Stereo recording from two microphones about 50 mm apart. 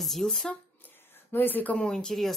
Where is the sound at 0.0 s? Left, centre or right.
Centre.